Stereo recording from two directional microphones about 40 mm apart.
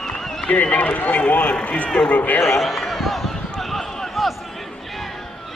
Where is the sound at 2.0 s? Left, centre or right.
Left.